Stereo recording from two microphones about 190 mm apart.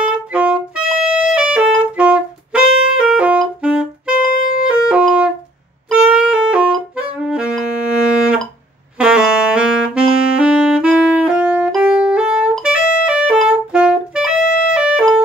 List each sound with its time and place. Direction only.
0.3 s music: 5° right (ahead or behind)
4.4 s music: 45° left (ahead or behind)
4.6 s music: 5° right (ahead or behind)
5.9 s saxophone: 5° right (ahead or behind)
8.9 s saxophone: 5° right (ahead or behind)